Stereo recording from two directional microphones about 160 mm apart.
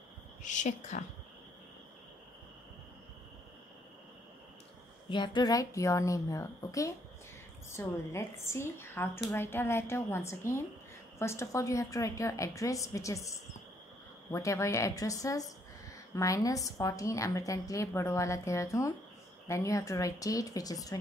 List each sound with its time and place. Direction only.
0.4 s speech: 50° left (ahead or behind)
5.1 s a woman's voice: 30° left (ahead or behind)
14.3 s a woman's voice: 20° left (ahead or behind)